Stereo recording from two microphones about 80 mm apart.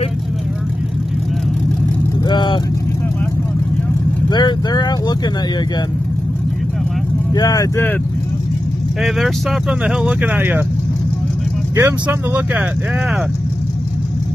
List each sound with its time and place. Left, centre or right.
2.2 s vehicle: left
4.3 s speech: left
7.3 s speech: left
9.0 s speech: centre
10.3 s speech: right
11.7 s speech: right